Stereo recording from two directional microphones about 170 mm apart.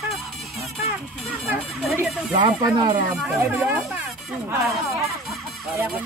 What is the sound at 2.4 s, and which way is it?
Speech, 25° right (ahead or behind).